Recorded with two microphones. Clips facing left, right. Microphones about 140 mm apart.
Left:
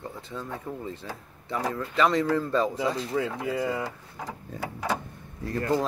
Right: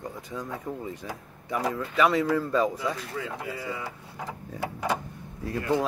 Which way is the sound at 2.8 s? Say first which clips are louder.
Left 5 dB; 65° left (ahead or behind).